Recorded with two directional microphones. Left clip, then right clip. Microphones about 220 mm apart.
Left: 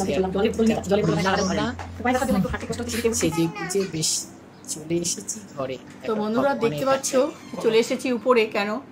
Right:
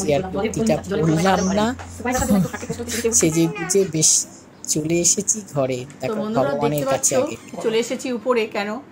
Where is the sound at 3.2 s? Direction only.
20° right (ahead or behind).